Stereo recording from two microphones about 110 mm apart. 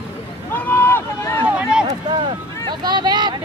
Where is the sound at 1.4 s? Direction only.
10° right (ahead or behind).